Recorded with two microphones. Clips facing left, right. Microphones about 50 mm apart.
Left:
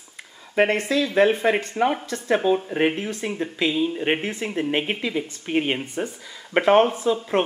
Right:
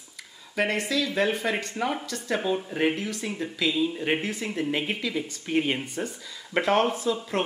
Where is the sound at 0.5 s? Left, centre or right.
Left.